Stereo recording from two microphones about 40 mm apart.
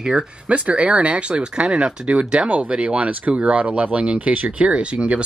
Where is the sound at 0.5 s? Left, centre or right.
Right.